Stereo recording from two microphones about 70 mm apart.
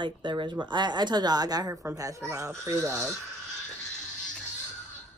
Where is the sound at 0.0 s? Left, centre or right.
Right.